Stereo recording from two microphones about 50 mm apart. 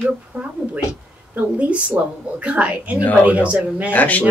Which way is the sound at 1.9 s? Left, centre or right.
Right.